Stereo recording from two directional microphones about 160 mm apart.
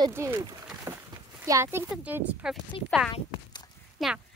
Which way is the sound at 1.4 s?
15° right (ahead or behind).